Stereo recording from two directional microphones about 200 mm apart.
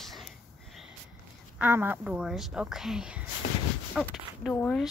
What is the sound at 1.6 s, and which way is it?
A woman's voice, 10° right (ahead or behind).